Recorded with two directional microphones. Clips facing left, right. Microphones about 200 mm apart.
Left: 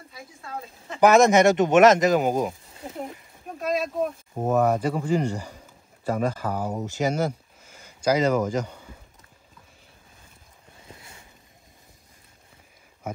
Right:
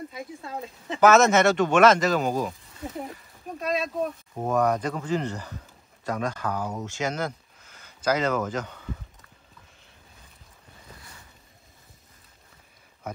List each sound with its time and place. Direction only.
1.0 s speech: 15° left (ahead or behind)
3.0 s a sound: centre (ahead or behind)
4.5 s speech: 5° left (ahead or behind)